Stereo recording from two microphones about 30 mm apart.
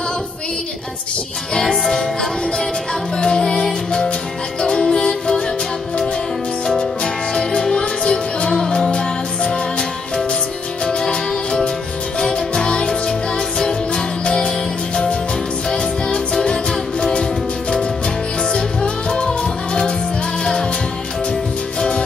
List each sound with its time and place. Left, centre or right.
1.5 s music: left
1.8 s music: centre; by 5.4 s left
6.8 s music: left
10.9 s music: left
15.7 s music: left
21.3 s music: left